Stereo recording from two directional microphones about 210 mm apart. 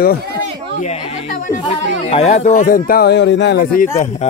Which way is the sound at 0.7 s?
30° left (ahead or behind).